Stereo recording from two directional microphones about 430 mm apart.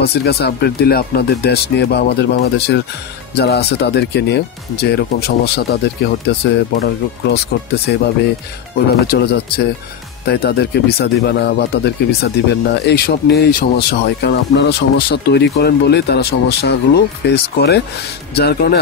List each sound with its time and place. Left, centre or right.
0.0 s speech: left